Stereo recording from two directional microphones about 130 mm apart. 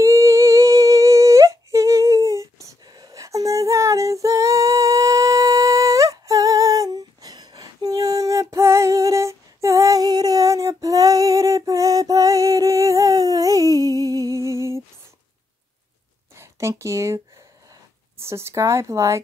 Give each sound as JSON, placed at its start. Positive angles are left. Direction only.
{"t": 0.0, "sound": "humming", "side_deg": -25}
{"t": 16.3, "sound": "a sound", "side_deg": -20}
{"t": 18.2, "sound": "speech", "side_deg": -20}